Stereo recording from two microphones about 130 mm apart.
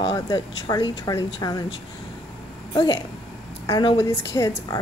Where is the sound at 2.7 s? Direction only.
30° left (ahead or behind).